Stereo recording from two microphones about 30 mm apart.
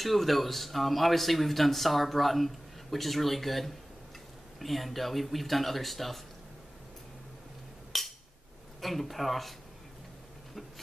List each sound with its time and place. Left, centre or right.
0.0 s speech: centre
7.9 s a sound: centre
8.8 s speech: centre